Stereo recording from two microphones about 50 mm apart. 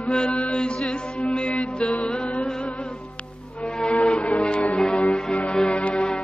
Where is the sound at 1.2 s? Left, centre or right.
Left.